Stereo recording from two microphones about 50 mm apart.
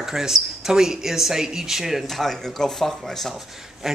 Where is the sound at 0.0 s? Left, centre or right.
Centre.